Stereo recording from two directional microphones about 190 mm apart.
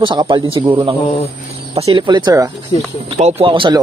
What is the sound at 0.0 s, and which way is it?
Speech, 25° right (ahead or behind).